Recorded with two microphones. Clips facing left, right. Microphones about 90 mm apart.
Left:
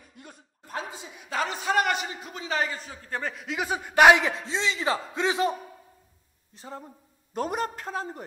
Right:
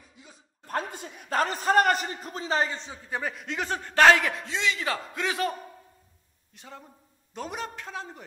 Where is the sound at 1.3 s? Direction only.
45° right (ahead or behind).